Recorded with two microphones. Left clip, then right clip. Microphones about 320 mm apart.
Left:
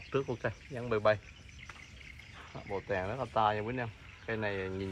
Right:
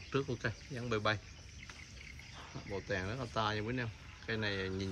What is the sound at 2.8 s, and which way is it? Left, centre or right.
Speech, centre.